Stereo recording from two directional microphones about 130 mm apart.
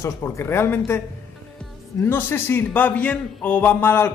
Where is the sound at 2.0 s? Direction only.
15° left (ahead or behind).